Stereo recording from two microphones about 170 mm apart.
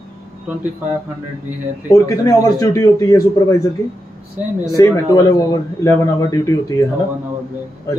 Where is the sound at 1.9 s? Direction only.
20° left (ahead or behind).